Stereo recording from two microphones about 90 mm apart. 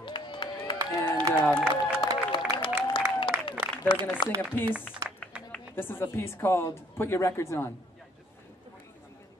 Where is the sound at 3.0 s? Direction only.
60° left (ahead or behind).